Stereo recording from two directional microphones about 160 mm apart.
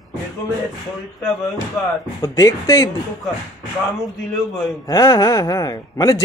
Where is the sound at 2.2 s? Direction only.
20° left (ahead or behind).